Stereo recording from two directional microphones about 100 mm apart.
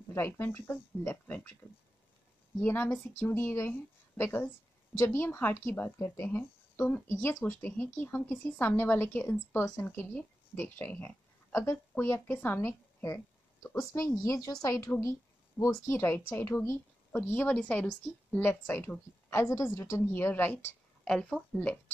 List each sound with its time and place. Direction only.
0.1 s a woman's voice: 20° left (ahead or behind)
2.6 s a woman's voice: 20° left (ahead or behind)
21.1 s speech: 5° left (ahead or behind)